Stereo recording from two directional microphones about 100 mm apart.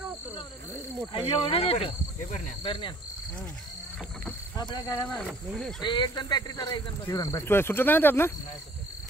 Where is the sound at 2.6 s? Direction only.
55° left (ahead or behind).